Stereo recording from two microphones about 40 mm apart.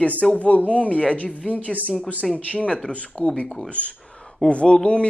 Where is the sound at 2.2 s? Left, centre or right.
Centre.